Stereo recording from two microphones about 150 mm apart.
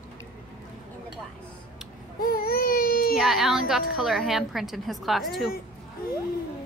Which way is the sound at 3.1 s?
Centre (ahead or behind).